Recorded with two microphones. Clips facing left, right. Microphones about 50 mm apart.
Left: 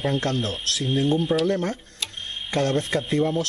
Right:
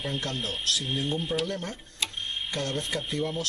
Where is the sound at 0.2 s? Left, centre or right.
Left.